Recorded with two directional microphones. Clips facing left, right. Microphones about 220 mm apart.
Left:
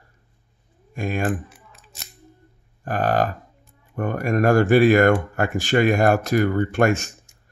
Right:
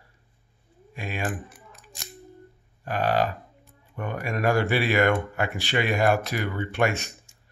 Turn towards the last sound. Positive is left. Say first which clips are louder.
# left 6 dB
turn(degrees=45)  # may be behind; listen again after turning